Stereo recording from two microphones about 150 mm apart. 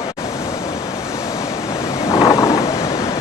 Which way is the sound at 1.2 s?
20° left (ahead or behind).